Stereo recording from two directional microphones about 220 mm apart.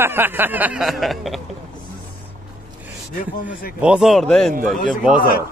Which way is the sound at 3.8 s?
5° right (ahead or behind).